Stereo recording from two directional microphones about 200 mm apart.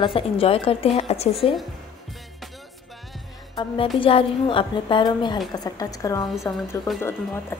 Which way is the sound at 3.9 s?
25° left (ahead or behind).